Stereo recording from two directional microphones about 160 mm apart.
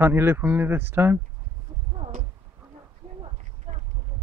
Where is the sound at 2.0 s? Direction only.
50° right (ahead or behind).